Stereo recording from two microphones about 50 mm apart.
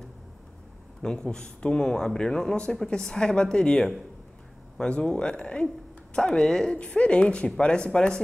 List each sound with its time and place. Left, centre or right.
1.0 s speech: centre